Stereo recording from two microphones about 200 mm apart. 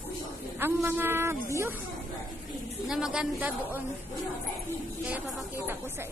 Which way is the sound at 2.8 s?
Centre (ahead or behind).